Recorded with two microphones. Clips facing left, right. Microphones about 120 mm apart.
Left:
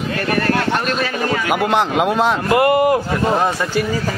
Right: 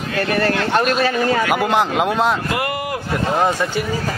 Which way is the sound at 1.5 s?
Centre (ahead or behind).